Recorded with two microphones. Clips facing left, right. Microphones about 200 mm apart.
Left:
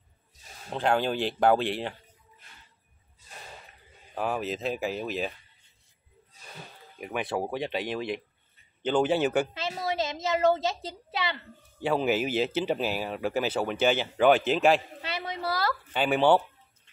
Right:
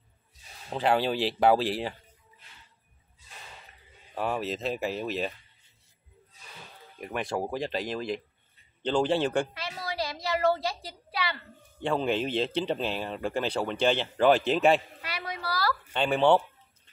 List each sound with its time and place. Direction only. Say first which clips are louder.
0.7 s speech: even; 5° right (ahead or behind)
4.1 s speech: even; centre (ahead or behind)
7.0 s speech: left 1 dB; centre (ahead or behind)
9.5 s a woman's voice: left 5 dB; 25° left (ahead or behind)
11.8 s speech: left 2 dB; 5° left (ahead or behind)
15.0 s a sound: left 3 dB; 25° left (ahead or behind)
15.9 s speech: even; 5° left (ahead or behind)